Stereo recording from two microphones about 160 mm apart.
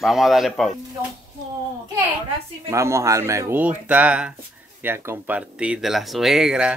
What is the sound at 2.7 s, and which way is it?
Speech, 20° right (ahead or behind).